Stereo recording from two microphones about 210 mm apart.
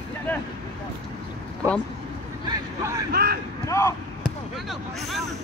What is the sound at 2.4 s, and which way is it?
Vehicle, 15° right (ahead or behind).